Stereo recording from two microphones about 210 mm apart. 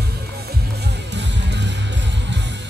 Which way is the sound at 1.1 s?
55° right (ahead or behind).